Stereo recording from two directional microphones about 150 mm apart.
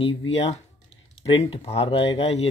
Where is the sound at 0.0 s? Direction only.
40° left (ahead or behind).